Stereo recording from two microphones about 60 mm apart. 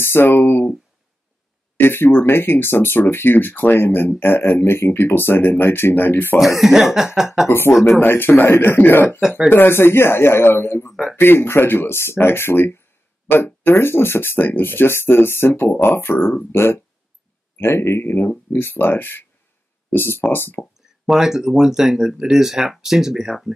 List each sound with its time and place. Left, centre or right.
0.0 s speech: left
1.8 s speech: left
6.4 s speech: centre
7.4 s a man's voice: left
18.1 s speech: left
21.0 s speech: centre